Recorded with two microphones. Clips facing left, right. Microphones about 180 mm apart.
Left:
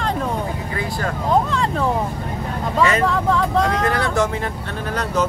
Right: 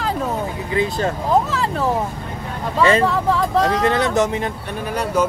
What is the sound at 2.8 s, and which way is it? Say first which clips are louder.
Speech: right 3 dB; 30° right (ahead or behind).